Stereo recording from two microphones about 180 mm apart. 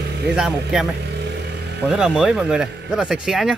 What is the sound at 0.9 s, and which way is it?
Vehicle, 70° right (ahead or behind).